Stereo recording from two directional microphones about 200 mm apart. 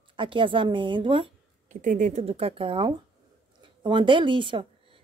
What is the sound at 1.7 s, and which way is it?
A woman's voice, 40° right (ahead or behind).